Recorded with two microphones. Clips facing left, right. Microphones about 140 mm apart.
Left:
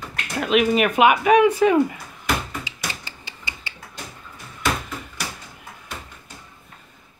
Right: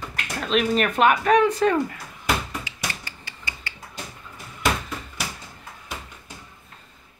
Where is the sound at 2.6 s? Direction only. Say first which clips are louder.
Even; 20° left (ahead or behind).